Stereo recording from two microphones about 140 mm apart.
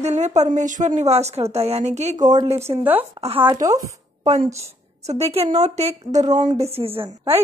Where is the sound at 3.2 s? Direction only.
40° right (ahead or behind).